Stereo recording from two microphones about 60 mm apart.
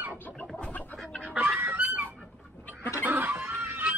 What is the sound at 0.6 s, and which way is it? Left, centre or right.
Chicken, left.